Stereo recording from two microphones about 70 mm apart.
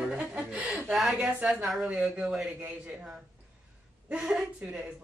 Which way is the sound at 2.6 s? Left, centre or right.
Right.